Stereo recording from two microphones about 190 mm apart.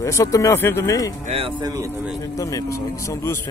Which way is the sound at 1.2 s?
30° right (ahead or behind).